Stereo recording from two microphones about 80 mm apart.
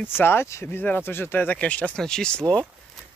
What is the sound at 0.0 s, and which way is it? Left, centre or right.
Speech, left.